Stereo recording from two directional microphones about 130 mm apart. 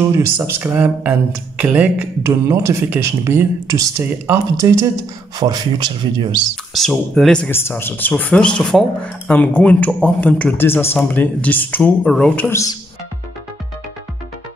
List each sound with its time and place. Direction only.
0.0 s speech: 20° right (ahead or behind)
2.2 s speech: 20° right (ahead or behind)
5.4 s speech: 30° right (ahead or behind)
6.5 s speech: centre (ahead or behind)
7.5 s speech: 15° left (ahead or behind)